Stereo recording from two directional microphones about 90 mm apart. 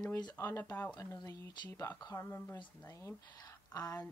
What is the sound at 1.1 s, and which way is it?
Speech, 55° left (ahead or behind).